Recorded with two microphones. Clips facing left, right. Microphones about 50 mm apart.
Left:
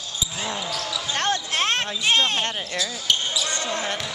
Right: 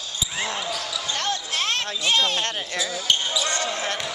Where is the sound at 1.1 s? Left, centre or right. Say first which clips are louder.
Left 4 dB; left.